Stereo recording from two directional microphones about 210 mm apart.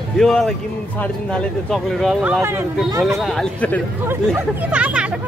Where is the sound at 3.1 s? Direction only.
Centre (ahead or behind).